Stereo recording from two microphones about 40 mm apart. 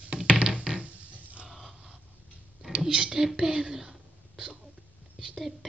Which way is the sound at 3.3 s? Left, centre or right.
Right.